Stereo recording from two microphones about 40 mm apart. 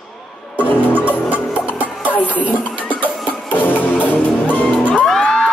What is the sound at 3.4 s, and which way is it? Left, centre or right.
Music, left.